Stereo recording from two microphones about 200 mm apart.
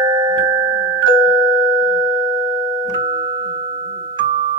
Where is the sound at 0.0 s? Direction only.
20° right (ahead or behind).